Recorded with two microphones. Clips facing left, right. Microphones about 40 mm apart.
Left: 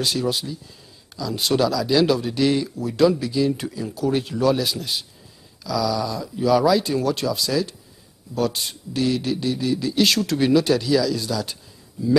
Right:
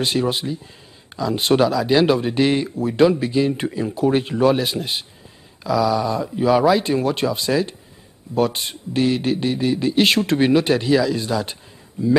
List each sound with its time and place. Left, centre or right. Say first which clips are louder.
0.0 s speech: right 3 dB; right